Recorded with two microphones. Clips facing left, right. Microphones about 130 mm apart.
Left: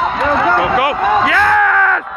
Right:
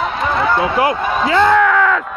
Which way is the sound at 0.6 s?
30° right (ahead or behind).